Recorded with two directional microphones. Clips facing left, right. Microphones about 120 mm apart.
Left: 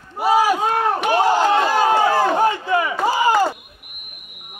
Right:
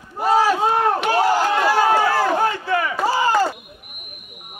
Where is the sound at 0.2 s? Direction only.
10° left (ahead or behind).